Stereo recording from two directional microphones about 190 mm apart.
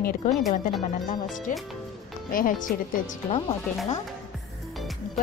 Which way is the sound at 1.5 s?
45° left (ahead or behind).